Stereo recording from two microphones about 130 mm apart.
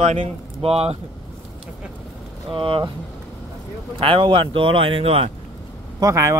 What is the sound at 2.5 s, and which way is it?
Speech, 40° right (ahead or behind).